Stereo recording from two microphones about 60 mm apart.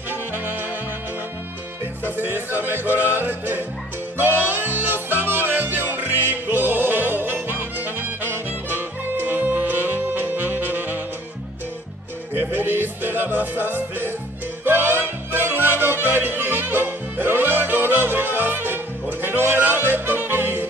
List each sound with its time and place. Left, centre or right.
2.1 s music: right
12.4 s music: right
19.2 s yodeling: right